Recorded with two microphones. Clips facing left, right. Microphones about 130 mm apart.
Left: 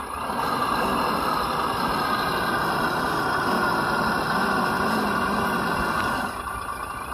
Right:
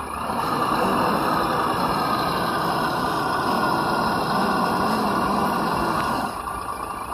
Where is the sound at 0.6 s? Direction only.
35° right (ahead or behind).